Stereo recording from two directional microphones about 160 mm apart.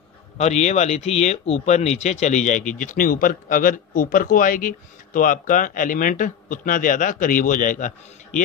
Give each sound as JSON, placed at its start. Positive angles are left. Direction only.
{"t": 0.4, "sound": "speech", "side_deg": 45}